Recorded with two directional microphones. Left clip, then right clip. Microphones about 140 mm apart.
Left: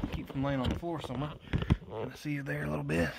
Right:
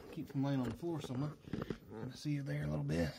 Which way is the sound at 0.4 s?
45° left (ahead or behind).